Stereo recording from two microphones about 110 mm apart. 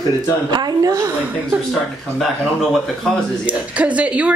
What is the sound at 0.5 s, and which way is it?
Speech, 35° right (ahead or behind).